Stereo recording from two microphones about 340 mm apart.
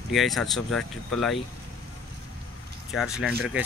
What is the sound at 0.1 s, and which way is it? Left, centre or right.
Speech, centre.